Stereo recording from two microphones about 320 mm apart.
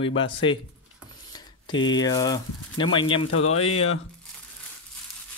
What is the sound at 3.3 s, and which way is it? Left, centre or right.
Speech, left.